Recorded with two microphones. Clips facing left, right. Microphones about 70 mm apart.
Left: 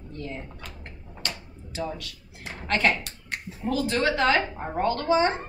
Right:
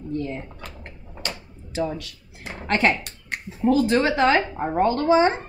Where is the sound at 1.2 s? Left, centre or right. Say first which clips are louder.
Right 3 dB; right.